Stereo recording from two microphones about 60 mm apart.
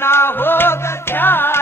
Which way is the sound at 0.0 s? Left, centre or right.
Left.